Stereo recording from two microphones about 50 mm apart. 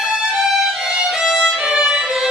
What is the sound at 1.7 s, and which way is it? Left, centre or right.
Violin, centre.